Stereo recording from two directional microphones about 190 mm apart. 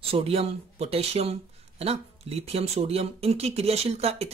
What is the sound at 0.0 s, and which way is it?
Speech, 30° right (ahead or behind).